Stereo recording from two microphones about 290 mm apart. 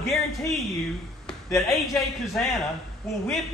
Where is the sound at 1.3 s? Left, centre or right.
Centre.